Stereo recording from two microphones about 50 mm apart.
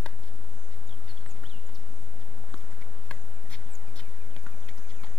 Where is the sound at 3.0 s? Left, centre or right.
Centre.